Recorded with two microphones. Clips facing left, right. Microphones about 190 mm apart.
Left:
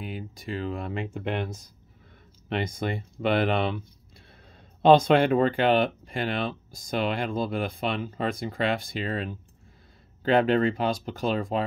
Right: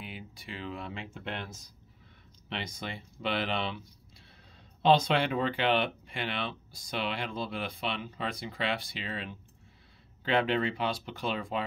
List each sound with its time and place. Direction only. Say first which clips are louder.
0.0 s speech: left 8 dB; 45° left (ahead or behind)
4.8 s speech: left 7 dB; 50° left (ahead or behind)